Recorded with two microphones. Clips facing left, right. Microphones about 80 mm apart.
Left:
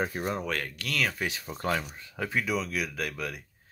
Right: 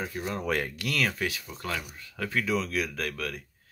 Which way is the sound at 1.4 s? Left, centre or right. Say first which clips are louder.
Left 5 dB; left.